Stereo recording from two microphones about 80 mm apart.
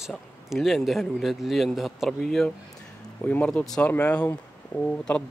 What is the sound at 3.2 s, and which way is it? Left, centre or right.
Speech, centre.